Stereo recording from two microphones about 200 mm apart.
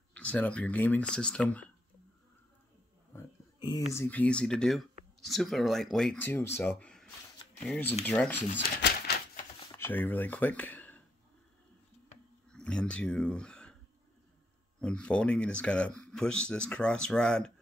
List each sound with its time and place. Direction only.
0.1 s speech: 5° left (ahead or behind)
3.1 s speech: 15° left (ahead or behind)
8.5 s a sound: 55° left (ahead or behind)
9.7 s speech: 10° left (ahead or behind)
12.4 s speech: 5° left (ahead or behind)
14.8 s speech: 5° left (ahead or behind)